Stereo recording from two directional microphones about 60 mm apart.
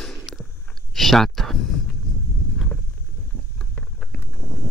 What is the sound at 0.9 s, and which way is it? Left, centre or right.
Speech, centre.